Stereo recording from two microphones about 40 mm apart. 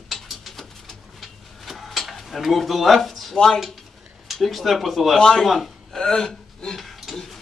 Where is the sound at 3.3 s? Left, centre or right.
Centre.